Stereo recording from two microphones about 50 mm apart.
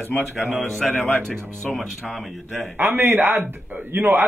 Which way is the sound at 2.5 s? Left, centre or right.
Right.